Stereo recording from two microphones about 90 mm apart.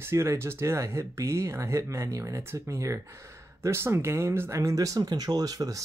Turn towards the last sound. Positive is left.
turn(degrees=-40)  # may be behind; listen again after turning